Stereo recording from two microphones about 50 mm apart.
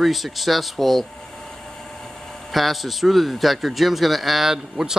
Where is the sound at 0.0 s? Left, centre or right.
Centre.